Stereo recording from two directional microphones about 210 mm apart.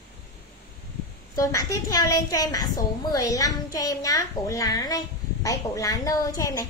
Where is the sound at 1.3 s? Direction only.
15° left (ahead or behind).